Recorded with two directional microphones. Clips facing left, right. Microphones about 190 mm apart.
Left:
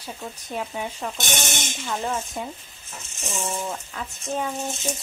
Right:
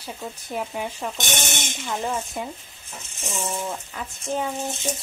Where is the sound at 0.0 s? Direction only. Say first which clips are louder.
Right 1 dB; 10° right (ahead or behind).